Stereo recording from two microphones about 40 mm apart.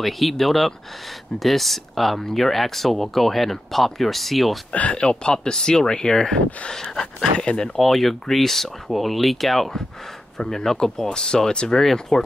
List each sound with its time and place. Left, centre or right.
0.0 s speech: centre
4.9 s speech: centre
7.8 s speech: centre
11.8 s speech: centre